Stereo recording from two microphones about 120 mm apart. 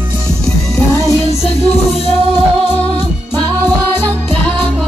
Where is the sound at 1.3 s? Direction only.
60° left (ahead or behind).